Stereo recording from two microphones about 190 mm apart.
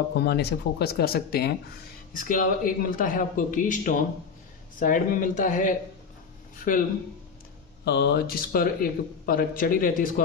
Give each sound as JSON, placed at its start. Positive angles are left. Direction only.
{"t": 0.2, "sound": "speech", "side_deg": 60}
{"t": 7.8, "sound": "speech", "side_deg": 60}